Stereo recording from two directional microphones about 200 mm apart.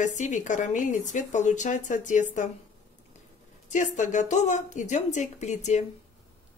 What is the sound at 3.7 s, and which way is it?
Speech, 40° left (ahead or behind).